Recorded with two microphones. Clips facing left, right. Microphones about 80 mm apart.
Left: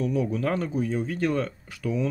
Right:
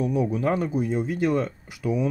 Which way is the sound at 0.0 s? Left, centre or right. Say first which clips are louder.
Right 2 dB; centre.